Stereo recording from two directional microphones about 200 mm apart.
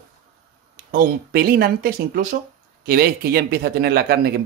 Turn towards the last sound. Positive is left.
turn(degrees=-50)  # may be behind; listen again after turning